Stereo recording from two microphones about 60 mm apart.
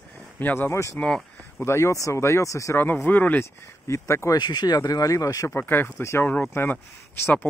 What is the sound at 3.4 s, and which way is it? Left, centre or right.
Speech, left.